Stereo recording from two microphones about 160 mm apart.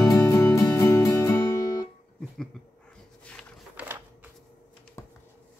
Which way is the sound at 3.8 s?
10° right (ahead or behind).